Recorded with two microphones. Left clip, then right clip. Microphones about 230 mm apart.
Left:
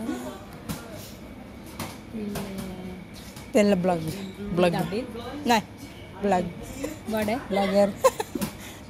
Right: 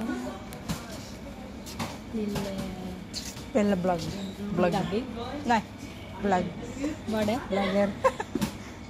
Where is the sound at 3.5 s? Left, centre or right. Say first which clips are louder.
Left 4 dB; left.